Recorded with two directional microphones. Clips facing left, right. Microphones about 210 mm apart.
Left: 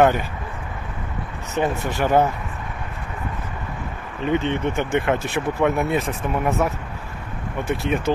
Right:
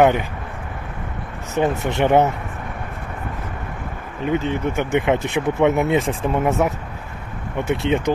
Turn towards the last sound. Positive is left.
turn(degrees=-25)  # may be behind; listen again after turning